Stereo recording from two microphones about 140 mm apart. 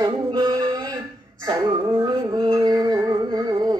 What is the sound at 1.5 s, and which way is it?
Music, 30° right (ahead or behind).